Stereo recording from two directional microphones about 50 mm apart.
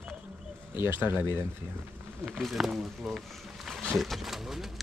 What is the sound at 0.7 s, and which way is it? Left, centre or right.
Speech, right.